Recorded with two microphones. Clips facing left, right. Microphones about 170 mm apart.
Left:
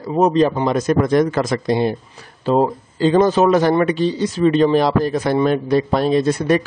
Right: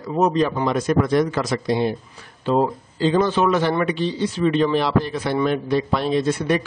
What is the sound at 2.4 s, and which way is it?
A man's voice, 40° left (ahead or behind).